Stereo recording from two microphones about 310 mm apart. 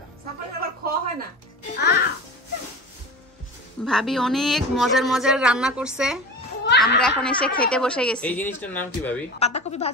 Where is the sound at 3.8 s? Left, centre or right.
Centre.